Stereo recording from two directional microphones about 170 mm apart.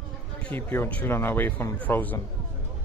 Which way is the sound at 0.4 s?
10° left (ahead or behind).